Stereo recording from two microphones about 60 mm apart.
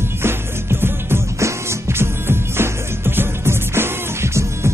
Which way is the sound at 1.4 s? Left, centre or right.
Right.